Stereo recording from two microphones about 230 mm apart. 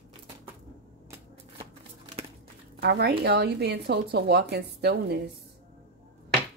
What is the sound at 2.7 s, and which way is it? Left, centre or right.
Speech, right.